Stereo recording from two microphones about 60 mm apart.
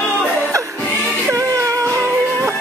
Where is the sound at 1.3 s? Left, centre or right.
Right.